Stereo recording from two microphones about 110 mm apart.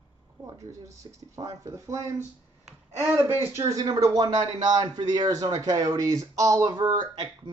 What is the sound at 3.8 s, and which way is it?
Speech, 35° right (ahead or behind).